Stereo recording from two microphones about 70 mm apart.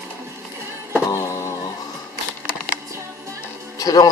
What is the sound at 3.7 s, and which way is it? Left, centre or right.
Music, left.